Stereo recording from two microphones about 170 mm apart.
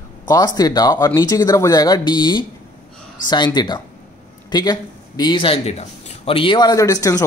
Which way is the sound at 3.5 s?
25° left (ahead or behind).